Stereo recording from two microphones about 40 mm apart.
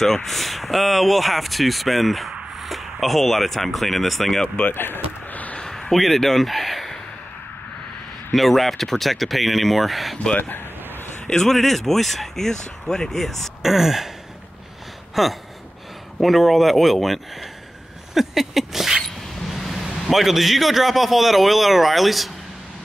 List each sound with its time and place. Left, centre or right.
0.0 s a man's voice: centre
4.6 s speech: left
5.3 s a sound: left
5.7 s a sound: centre
5.9 s speech: centre
8.3 s a man's voice: centre
11.2 s a man's voice: centre
13.6 s a sound: centre
15.2 s a man's voice: centre
18.1 s a sound: centre
19.5 s vehicle: centre
19.9 s a man's voice: centre